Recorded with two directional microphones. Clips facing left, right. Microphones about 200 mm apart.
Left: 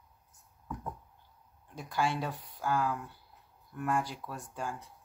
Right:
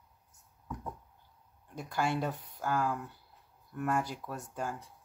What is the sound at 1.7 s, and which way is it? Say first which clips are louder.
Speech: even; 45° right (ahead or behind).